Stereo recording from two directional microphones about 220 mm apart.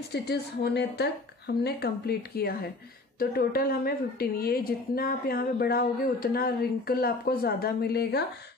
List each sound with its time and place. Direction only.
0.1 s a woman's voice: 50° left (ahead or behind)